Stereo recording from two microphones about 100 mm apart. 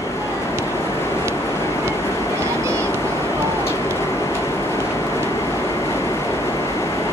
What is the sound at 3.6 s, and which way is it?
Vehicle, 25° left (ahead or behind).